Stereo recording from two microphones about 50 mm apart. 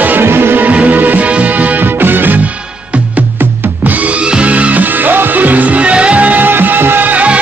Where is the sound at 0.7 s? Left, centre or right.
Right.